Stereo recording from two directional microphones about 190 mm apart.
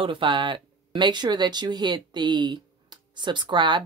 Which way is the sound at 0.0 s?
25° right (ahead or behind).